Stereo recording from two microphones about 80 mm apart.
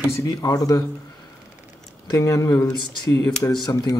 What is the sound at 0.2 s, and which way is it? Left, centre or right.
Speech, left.